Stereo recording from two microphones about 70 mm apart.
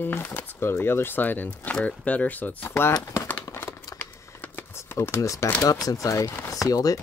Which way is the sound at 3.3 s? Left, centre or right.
Left.